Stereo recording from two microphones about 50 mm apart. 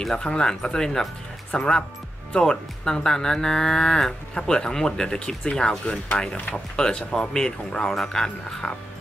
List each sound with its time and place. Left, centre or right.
0.0 s speech: centre